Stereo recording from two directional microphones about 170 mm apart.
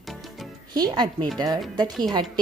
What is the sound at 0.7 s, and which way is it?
Speech, 25° right (ahead or behind).